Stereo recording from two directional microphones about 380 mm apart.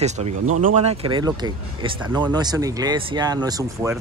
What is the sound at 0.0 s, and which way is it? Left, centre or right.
Speech, centre.